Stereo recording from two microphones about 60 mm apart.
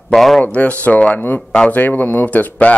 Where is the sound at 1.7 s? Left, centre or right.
Left.